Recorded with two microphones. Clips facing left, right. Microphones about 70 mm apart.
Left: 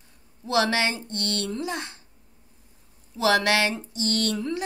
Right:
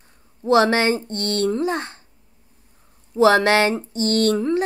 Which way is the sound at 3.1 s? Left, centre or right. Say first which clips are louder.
Right 7 dB; right.